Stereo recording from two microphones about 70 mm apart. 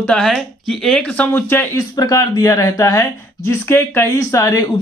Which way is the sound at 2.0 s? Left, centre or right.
Left.